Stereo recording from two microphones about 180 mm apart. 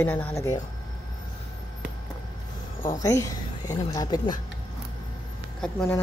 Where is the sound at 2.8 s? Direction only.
20° left (ahead or behind).